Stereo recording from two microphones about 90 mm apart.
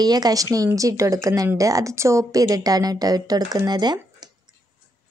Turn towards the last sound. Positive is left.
turn(degrees=-50)  # may be behind; listen again after turning